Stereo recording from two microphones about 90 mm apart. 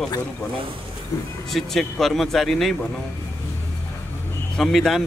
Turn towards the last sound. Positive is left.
turn(degrees=5)  # may be behind; listen again after turning